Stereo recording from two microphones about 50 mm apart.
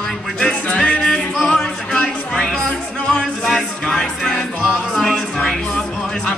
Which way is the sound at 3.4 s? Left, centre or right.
Centre.